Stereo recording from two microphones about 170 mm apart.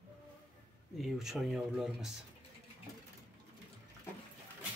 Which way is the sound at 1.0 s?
Centre (ahead or behind).